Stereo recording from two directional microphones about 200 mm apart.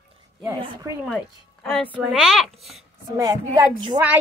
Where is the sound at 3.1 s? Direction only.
15° right (ahead or behind).